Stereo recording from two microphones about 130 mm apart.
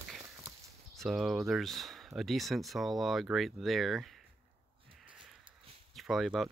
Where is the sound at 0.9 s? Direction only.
Centre (ahead or behind).